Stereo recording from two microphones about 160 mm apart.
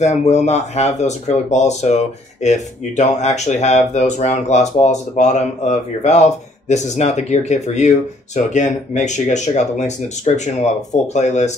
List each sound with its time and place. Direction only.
0.0 s speech: 45° left (ahead or behind)